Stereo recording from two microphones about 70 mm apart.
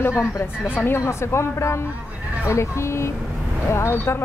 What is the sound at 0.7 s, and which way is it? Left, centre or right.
Speech, left.